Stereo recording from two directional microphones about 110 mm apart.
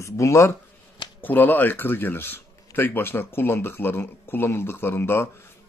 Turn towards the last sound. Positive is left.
turn(degrees=20)  # may be behind; listen again after turning